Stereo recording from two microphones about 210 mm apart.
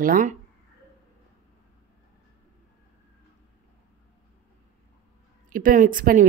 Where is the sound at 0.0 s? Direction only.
40° right (ahead or behind).